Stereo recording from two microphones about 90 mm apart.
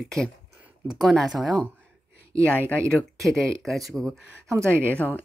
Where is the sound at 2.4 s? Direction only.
15° left (ahead or behind).